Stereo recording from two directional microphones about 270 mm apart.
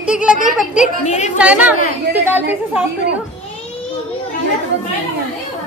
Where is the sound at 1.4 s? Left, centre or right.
Centre.